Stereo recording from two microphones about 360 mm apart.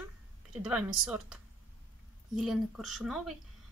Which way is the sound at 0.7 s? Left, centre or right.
Centre.